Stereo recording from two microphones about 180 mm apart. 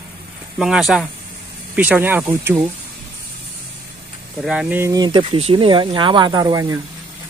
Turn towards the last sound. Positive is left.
turn(degrees=-20)  # may be behind; listen again after turning